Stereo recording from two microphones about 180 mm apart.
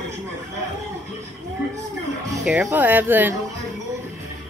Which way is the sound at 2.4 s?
10° right (ahead or behind).